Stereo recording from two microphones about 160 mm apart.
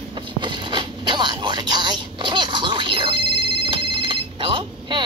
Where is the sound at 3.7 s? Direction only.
35° right (ahead or behind).